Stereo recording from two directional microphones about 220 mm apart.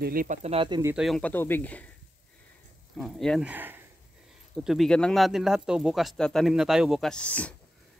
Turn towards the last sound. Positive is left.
turn(degrees=5)  # may be behind; listen again after turning